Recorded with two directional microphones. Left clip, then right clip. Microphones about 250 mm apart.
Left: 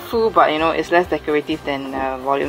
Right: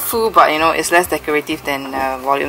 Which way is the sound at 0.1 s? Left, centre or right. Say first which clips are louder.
Right 1 dB; left.